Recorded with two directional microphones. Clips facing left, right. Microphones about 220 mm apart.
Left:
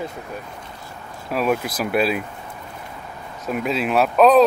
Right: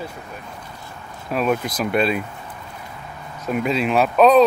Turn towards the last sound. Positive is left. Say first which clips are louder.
# even
turn(degrees=0)  # may be behind; listen again after turning